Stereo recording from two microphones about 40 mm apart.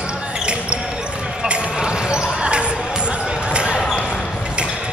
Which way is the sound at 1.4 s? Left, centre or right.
Right.